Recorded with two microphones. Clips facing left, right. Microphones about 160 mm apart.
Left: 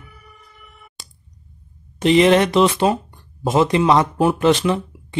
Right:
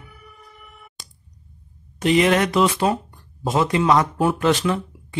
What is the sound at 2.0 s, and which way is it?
Speech, 25° left (ahead or behind).